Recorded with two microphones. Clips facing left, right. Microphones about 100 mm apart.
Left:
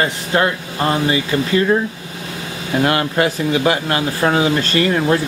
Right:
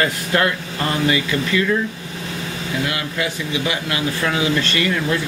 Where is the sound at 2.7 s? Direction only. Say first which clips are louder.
Left 9 dB; 50° left (ahead or behind).